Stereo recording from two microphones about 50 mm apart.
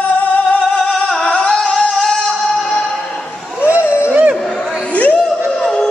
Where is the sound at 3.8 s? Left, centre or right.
Left.